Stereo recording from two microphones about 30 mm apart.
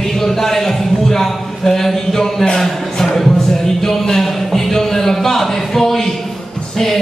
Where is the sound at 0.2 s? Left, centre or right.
Centre.